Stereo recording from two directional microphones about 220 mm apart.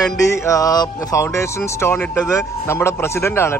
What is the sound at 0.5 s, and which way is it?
Speech, 15° left (ahead or behind).